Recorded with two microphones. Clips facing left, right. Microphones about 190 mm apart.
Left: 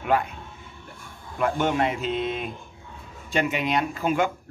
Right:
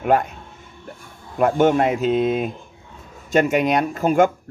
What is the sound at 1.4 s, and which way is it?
Speech, 45° right (ahead or behind).